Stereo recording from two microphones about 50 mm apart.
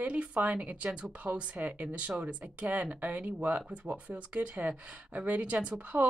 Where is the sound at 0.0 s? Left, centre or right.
Right.